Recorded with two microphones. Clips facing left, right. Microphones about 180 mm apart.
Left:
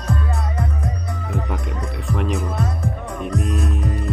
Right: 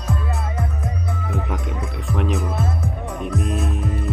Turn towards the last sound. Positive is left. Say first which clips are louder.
# left 1 dB
turn(degrees=0)  # may be behind; listen again after turning